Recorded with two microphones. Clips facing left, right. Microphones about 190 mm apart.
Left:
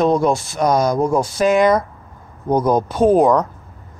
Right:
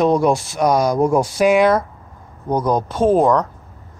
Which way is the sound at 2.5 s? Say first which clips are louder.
Left 2 dB; 5° left (ahead or behind).